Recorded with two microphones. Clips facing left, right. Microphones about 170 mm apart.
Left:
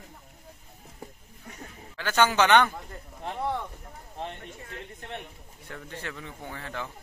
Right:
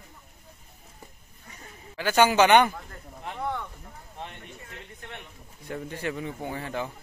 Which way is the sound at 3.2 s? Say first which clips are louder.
Left 2 dB; 30° left (ahead or behind).